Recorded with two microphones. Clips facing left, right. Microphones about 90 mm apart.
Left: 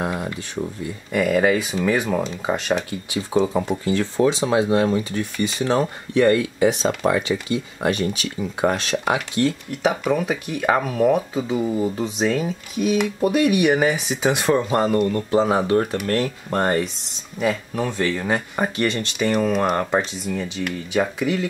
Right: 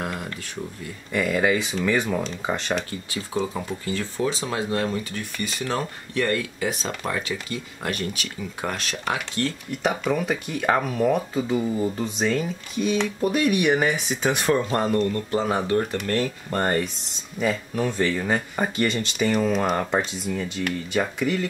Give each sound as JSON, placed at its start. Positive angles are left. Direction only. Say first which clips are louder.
{"t": 0.0, "sound": "a sound", "louder": "left 5 dB", "side_deg": 15}
{"t": 1.1, "sound": "speech", "louder": "left 4 dB", "side_deg": 5}
{"t": 3.1, "sound": "speech", "louder": "left 9 dB", "side_deg": 25}
{"t": 9.7, "sound": "speech", "louder": "left 3 dB", "side_deg": 0}
{"t": 15.0, "sound": "speech", "louder": "left 5 dB", "side_deg": 20}
{"t": 17.8, "sound": "speech", "louder": "left 1 dB", "side_deg": 0}